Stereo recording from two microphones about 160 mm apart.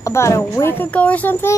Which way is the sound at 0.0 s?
20° left (ahead or behind).